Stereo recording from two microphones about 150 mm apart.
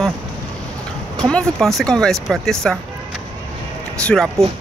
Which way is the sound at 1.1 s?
5° left (ahead or behind).